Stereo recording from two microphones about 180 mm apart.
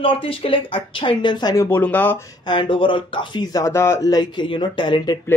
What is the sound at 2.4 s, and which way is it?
Speech, 25° left (ahead or behind).